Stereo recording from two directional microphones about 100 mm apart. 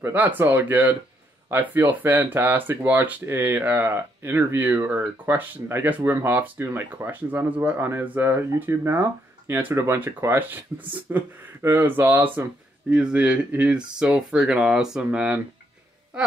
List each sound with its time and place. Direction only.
0.0 s speech: 15° right (ahead or behind)